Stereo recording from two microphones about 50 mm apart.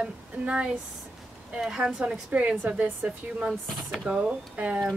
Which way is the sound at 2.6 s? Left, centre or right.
Right.